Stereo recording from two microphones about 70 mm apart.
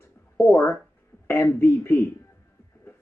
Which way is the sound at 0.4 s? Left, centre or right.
Left.